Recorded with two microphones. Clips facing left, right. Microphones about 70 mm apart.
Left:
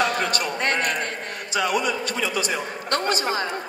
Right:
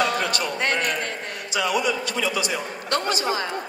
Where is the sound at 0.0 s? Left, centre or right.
Left.